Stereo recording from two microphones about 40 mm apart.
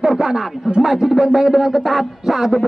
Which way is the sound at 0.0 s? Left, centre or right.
Centre.